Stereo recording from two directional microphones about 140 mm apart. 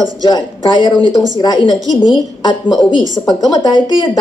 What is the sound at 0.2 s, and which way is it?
A woman's voice, 30° left (ahead or behind).